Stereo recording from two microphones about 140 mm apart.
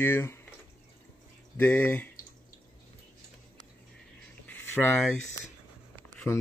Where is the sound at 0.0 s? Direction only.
15° left (ahead or behind).